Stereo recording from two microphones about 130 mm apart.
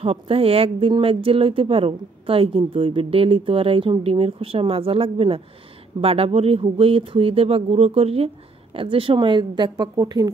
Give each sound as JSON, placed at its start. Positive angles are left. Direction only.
{"t": 0.0, "sound": "a woman's voice", "side_deg": -45}